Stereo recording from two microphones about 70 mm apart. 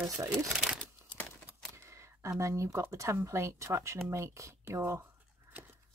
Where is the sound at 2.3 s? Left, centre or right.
Right.